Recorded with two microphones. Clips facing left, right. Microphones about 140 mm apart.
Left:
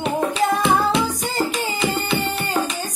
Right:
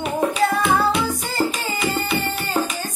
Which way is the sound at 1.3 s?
15° left (ahead or behind).